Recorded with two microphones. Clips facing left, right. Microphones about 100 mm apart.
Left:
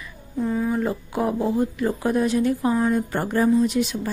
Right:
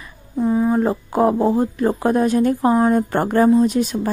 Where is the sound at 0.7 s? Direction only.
40° right (ahead or behind).